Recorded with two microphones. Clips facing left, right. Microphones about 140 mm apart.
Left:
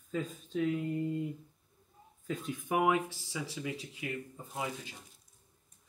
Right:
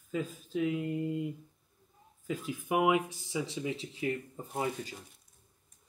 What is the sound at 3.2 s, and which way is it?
Speech, 25° right (ahead or behind).